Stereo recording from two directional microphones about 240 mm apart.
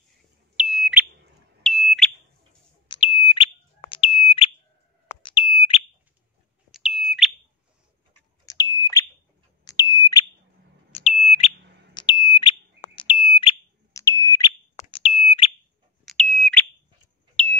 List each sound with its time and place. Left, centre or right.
0.6 s smoke detector: centre
2.9 s smoke detector: left
5.1 s chirp tone: left
6.7 s bird: centre
8.5 s smoke detector: centre
10.9 s a sound: left
11.2 s smoke detector: left
16.1 s smoke detector: centre